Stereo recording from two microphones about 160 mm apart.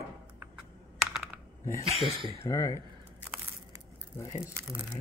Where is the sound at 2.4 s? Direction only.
20° left (ahead or behind).